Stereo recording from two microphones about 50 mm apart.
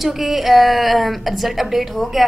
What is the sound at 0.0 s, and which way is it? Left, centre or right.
A woman's voice, centre.